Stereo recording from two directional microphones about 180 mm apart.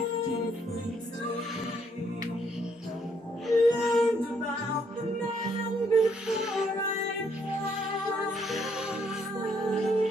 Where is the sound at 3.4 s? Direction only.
Centre (ahead or behind).